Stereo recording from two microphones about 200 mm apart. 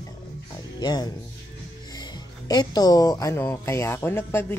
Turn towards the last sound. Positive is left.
turn(degrees=10)  # may be behind; listen again after turning